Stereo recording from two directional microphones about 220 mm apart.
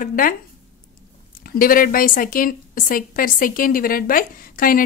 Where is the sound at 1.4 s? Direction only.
40° left (ahead or behind).